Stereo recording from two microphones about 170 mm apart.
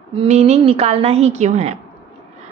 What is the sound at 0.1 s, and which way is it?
A woman's voice, 35° right (ahead or behind).